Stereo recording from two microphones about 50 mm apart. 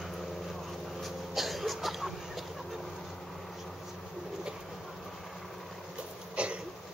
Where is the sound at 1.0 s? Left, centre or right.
Centre.